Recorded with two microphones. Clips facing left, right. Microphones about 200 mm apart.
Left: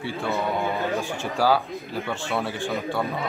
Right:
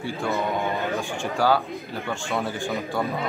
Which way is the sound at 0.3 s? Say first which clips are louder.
Even; 15° right (ahead or behind).